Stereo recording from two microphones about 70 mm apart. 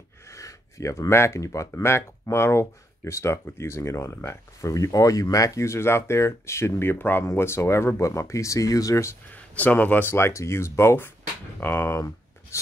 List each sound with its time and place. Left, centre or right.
0.3 s speech: left
4.6 s speech: left
9.3 s speech: left
10.1 s speech: left